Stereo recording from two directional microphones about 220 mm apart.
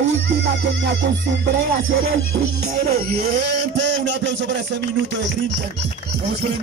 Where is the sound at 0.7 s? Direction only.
55° right (ahead or behind).